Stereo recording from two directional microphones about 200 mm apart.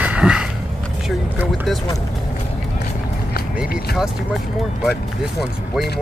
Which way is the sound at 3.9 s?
Centre (ahead or behind).